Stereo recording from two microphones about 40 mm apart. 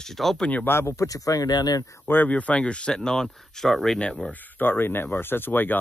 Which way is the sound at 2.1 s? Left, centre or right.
Left.